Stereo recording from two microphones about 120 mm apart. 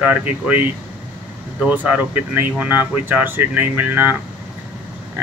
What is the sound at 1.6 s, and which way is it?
Speech, 15° right (ahead or behind).